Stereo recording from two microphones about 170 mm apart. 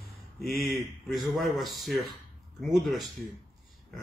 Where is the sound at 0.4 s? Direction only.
Centre (ahead or behind).